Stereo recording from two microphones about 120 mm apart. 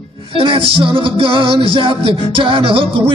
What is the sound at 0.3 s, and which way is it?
Music, 50° right (ahead or behind).